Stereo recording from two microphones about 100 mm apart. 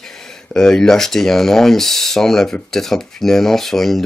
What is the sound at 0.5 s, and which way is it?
Speech, 5° left (ahead or behind).